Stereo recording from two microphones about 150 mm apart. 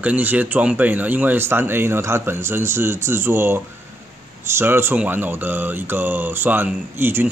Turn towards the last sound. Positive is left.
turn(degrees=-15)  # may be behind; listen again after turning